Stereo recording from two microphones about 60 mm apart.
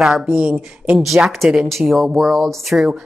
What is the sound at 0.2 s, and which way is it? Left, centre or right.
Speech, centre.